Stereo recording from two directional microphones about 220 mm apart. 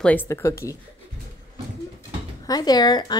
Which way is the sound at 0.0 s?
10° left (ahead or behind).